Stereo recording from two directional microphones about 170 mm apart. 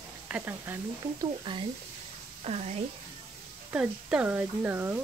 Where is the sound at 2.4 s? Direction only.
35° right (ahead or behind).